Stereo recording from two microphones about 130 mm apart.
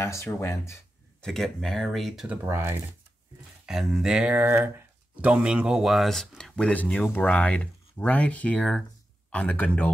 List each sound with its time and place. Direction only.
0.0 s speech: 20° left (ahead or behind)
1.2 s speech: 5° left (ahead or behind)
2.2 s speech: 20° right (ahead or behind)
3.6 s speech: 5° right (ahead or behind)